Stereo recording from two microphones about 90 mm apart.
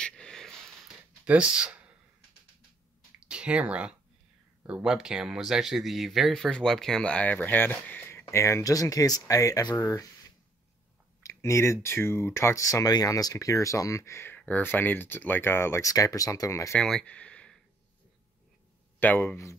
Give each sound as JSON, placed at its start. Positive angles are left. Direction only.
{"t": 0.0, "sound": "a sound", "side_deg": 10}
{"t": 1.2, "sound": "speech", "side_deg": -10}
{"t": 3.3, "sound": "speech", "side_deg": -15}
{"t": 9.8, "sound": "speech", "side_deg": 30}
{"t": 11.2, "sound": "speech", "side_deg": 30}
{"t": 17.0, "sound": "a sound", "side_deg": 15}
{"t": 18.9, "sound": "speech", "side_deg": 20}